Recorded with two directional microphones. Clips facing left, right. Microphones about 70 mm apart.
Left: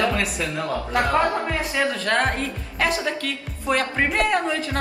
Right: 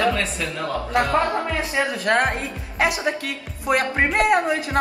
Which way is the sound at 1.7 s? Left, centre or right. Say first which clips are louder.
Right 2 dB; centre.